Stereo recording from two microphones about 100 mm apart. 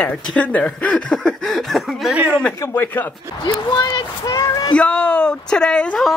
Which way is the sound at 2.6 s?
20° left (ahead or behind).